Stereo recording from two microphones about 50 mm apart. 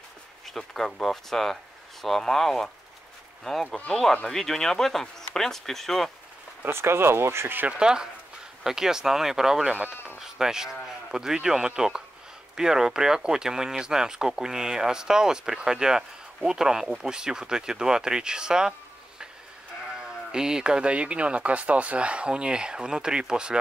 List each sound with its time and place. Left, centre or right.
0.5 s speech: centre
3.9 s speech: centre
6.6 s speech: right
7.7 s speech: centre
9.7 s speech: right
10.1 s speech: centre